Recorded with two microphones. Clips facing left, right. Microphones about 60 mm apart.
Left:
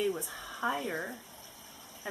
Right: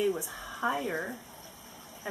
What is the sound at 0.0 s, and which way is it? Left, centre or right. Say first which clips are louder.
Speech: right 3 dB; centre.